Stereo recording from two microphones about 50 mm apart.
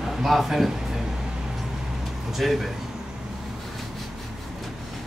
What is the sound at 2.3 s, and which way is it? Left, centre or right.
Speech, centre.